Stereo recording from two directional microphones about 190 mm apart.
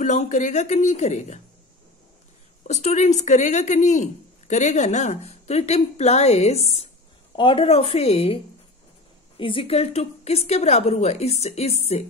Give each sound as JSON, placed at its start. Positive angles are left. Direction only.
{"t": 0.0, "sound": "speech", "side_deg": 40}
{"t": 2.6, "sound": "speech", "side_deg": 35}
{"t": 9.4, "sound": "speech", "side_deg": 25}